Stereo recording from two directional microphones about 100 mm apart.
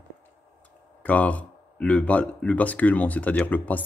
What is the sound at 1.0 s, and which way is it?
Speech, 15° left (ahead or behind).